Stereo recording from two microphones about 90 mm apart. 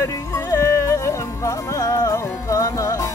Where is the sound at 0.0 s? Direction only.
40° left (ahead or behind).